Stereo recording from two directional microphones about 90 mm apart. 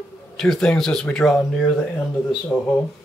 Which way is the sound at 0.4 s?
5° left (ahead or behind).